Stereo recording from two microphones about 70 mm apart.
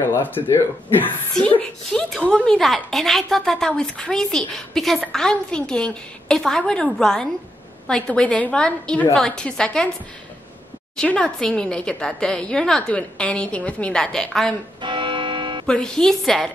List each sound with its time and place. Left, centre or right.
0.1 s speech: left
1.3 s a woman's voice: centre
11.1 s a woman's voice: centre
14.8 s music: right
15.6 s a woman's voice: centre